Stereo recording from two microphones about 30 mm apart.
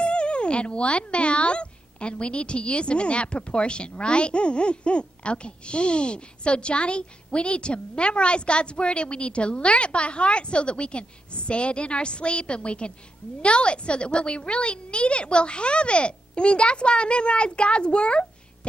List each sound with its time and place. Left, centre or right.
0.0 s speech: left